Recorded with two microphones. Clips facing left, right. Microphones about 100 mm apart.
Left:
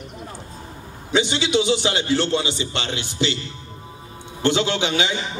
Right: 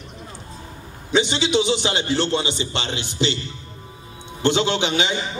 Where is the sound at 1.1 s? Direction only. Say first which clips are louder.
Right 1 dB; 20° right (ahead or behind).